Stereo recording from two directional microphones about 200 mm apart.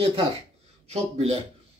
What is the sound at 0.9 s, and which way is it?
Speech, 30° right (ahead or behind).